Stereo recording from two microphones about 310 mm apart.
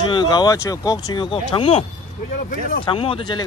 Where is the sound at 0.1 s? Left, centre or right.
Centre.